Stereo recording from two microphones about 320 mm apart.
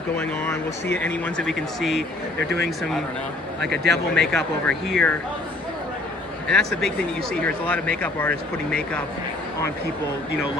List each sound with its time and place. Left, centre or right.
0.9 s speech: centre
2.4 s speech: right
3.7 s speech: right
4.1 s speech: centre
6.4 s speech: centre